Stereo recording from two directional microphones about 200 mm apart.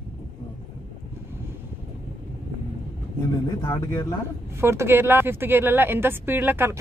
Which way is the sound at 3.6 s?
15° left (ahead or behind).